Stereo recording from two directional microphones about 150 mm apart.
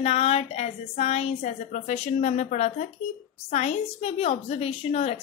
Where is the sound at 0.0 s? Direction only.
45° left (ahead or behind).